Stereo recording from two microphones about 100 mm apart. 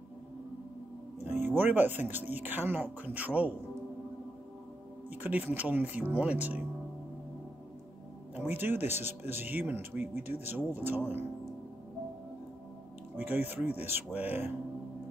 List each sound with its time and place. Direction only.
1.3 s speech: 20° right (ahead or behind)
5.2 s speech: 15° right (ahead or behind)
8.4 s speech: 20° right (ahead or behind)
13.5 s speech: 15° right (ahead or behind)